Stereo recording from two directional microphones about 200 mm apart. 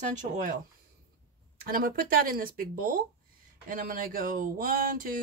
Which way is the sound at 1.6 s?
45° right (ahead or behind).